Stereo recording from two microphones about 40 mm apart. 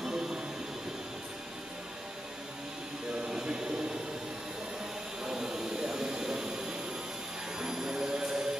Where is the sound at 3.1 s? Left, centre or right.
Centre.